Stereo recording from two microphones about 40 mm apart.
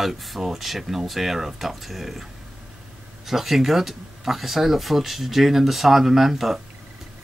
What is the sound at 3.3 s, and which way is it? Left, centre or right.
Speech, centre.